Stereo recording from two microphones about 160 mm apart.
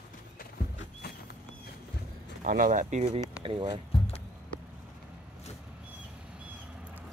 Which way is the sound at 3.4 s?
30° right (ahead or behind).